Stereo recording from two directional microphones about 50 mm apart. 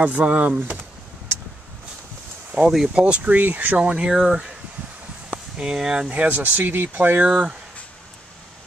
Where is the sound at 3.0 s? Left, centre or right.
Right.